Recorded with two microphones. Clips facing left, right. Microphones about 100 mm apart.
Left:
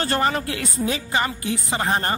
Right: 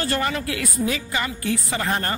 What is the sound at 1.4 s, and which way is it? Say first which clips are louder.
Speech: even; 20° left (ahead or behind).